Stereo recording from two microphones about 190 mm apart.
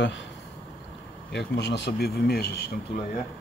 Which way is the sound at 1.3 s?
65° left (ahead or behind).